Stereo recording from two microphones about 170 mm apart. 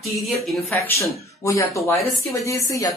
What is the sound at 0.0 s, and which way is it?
Speech, centre (ahead or behind).